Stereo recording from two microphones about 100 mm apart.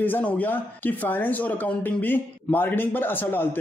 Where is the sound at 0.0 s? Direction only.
15° left (ahead or behind).